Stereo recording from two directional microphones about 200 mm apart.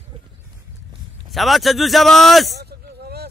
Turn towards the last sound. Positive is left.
turn(degrees=-55)  # may be behind; listen again after turning